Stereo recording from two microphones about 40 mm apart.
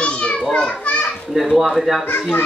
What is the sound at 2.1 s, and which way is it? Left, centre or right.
Speech, left.